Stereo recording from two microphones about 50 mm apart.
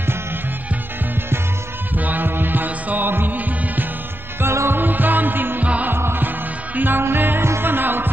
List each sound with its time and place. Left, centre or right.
2.0 s music: right
4.4 s music: right
4.7 s music: right